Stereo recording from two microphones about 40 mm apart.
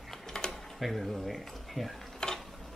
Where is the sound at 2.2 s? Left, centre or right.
Centre.